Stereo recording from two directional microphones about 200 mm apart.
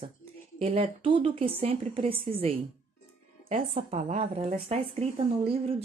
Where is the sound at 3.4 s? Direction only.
30° right (ahead or behind).